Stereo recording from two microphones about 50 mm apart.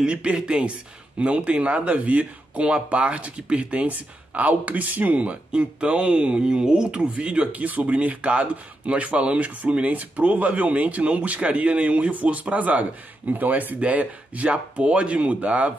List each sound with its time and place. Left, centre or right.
0.0 s speech: right